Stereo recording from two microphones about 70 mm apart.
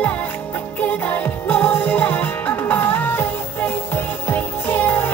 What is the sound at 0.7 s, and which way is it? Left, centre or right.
Music, left.